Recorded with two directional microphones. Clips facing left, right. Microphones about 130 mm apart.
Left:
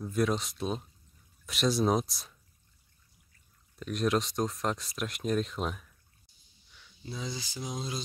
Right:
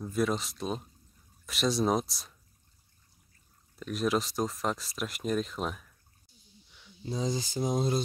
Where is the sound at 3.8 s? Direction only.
Centre (ahead or behind).